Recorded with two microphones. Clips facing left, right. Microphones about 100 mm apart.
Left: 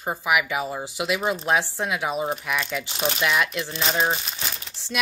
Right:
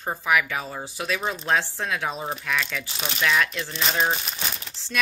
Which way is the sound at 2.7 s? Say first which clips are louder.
Left 5 dB; 25° left (ahead or behind).